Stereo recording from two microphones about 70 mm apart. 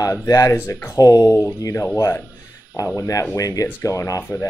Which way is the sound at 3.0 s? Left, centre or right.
Left.